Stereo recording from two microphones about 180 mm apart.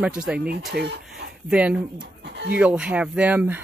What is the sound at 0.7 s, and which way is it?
Speech, 60° right (ahead or behind).